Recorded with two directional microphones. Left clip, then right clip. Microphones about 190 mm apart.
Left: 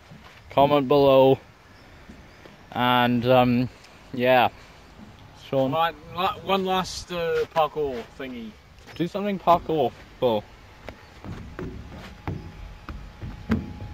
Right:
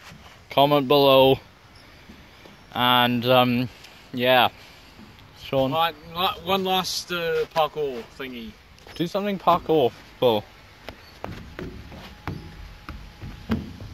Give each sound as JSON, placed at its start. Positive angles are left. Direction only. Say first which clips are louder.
{"t": 0.5, "sound": "speech", "louder": "right 1 dB", "side_deg": 0}
{"t": 2.7, "sound": "speech", "louder": "right 2 dB", "side_deg": 5}
{"t": 5.4, "sound": "a sound", "louder": "right 1 dB", "side_deg": -15}
{"t": 5.7, "sound": "speech", "louder": "right 1 dB", "side_deg": 35}
{"t": 7.1, "sound": "speech", "louder": "right 1 dB", "side_deg": 15}
{"t": 7.5, "sound": "speech", "louder": "even", "side_deg": 0}
{"t": 8.9, "sound": "speech", "louder": "right 2 dB", "side_deg": -35}
{"t": 11.5, "sound": "a sound", "louder": "even", "side_deg": -15}